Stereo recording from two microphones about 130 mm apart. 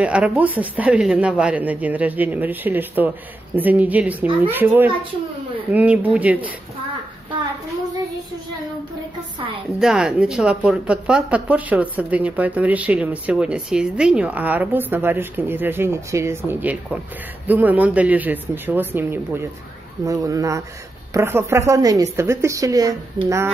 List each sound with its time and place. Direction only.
0.0 s a woman's voice: 10° right (ahead or behind)
9.8 s a woman's voice: 5° right (ahead or behind); by 23.5 s 20° right (ahead or behind)